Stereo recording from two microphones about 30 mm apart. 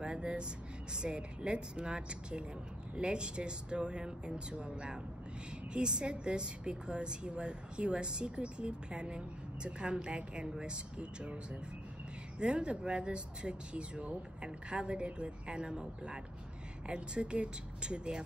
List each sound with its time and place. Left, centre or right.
0.0 s vehicle: right
0.9 s a woman's voice: right
12.4 s a woman's voice: right